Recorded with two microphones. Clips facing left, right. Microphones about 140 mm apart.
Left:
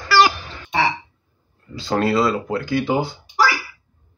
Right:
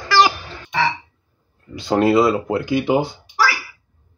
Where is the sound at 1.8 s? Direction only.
20° right (ahead or behind).